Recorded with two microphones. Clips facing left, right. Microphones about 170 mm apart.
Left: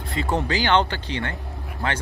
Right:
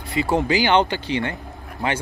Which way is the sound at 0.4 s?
15° right (ahead or behind).